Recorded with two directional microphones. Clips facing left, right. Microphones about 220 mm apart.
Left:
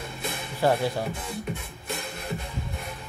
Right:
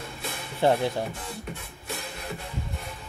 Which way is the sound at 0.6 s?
25° right (ahead or behind).